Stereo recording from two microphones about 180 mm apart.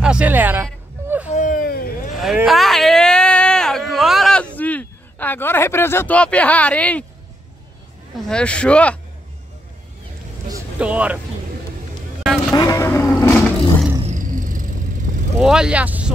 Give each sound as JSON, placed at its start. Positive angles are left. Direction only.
{"t": 0.0, "sound": "speech", "side_deg": -5}
{"t": 1.3, "sound": "a sound", "side_deg": 45}
{"t": 2.1, "sound": "a sound", "side_deg": 0}
{"t": 8.3, "sound": "speech", "side_deg": 5}
{"t": 10.8, "sound": "speech", "side_deg": -5}
{"t": 12.2, "sound": "vehicle", "side_deg": 0}
{"t": 12.5, "sound": "vehicle", "side_deg": 20}
{"t": 14.0, "sound": "wild animals", "side_deg": -45}
{"t": 15.4, "sound": "speech", "side_deg": -5}